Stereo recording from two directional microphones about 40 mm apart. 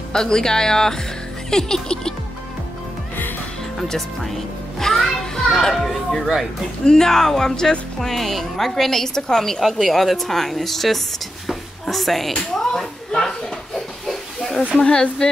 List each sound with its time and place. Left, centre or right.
0.1 s a woman's voice: centre
3.9 s a child's voice: centre
9.6 s a woman's voice: centre
14.8 s speech: centre